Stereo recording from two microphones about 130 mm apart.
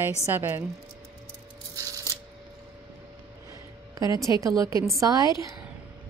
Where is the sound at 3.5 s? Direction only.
25° right (ahead or behind).